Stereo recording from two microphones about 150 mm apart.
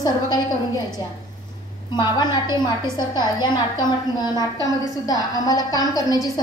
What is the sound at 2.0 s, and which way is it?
A woman's voice, 30° left (ahead or behind).